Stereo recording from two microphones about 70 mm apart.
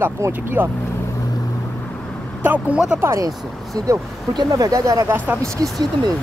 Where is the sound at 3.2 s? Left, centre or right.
Right.